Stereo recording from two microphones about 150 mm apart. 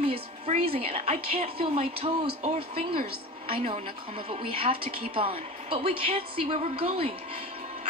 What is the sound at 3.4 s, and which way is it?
A man's voice, 40° right (ahead or behind).